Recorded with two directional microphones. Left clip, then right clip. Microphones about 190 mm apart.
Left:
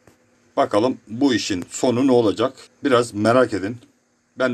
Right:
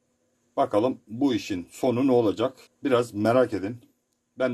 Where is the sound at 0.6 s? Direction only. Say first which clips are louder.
Left 5 dB; centre (ahead or behind).